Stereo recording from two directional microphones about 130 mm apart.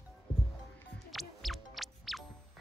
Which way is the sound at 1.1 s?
Centre (ahead or behind).